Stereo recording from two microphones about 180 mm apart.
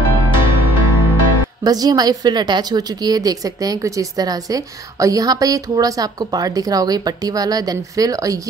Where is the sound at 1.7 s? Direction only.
20° right (ahead or behind).